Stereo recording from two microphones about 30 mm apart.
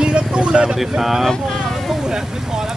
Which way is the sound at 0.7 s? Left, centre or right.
Centre.